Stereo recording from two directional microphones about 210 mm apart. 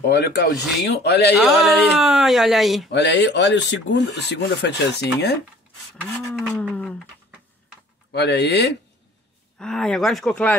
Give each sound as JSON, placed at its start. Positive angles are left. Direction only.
{"t": 0.0, "sound": "speech", "side_deg": 55}
{"t": 1.4, "sound": "speech", "side_deg": 0}
{"t": 2.9, "sound": "speech", "side_deg": 55}
{"t": 6.5, "sound": "speech", "side_deg": 5}
{"t": 8.1, "sound": "speech", "side_deg": 50}
{"t": 9.6, "sound": "speech", "side_deg": 5}